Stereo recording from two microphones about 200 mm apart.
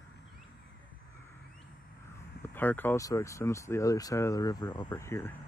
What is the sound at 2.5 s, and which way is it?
Speech, 10° left (ahead or behind).